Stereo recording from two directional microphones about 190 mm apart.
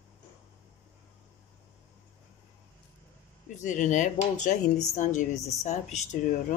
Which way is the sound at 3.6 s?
40° left (ahead or behind).